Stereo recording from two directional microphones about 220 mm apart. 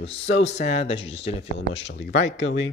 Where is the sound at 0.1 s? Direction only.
30° left (ahead or behind).